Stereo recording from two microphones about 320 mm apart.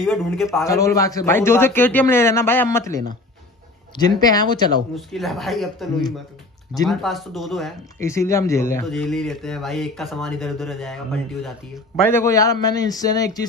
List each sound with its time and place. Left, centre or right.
0.0 s speech: centre
0.7 s a man's voice: centre
4.9 s speech: centre
12.1 s a man's voice: centre